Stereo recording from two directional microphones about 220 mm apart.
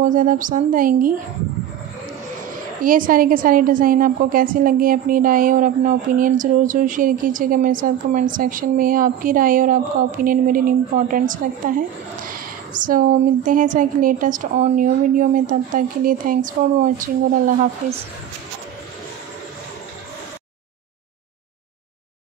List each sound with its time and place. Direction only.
0.0 s a woman's voice: 35° right (ahead or behind)
2.8 s a woman's voice: 40° right (ahead or behind)